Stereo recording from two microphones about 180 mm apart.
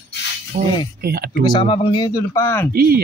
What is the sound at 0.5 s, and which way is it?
Speech, 45° right (ahead or behind).